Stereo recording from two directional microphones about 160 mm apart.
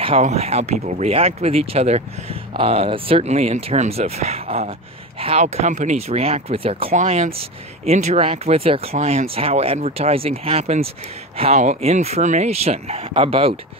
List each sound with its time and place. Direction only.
0.0 s speech: 40° right (ahead or behind)